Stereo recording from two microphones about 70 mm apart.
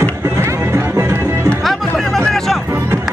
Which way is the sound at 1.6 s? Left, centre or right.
Centre.